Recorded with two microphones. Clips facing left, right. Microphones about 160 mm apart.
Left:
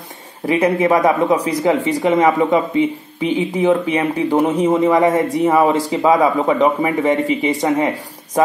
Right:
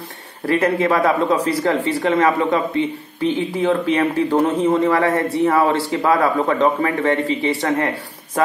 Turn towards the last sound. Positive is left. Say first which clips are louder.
# left 3 dB
turn(degrees=15)  # may be behind; listen again after turning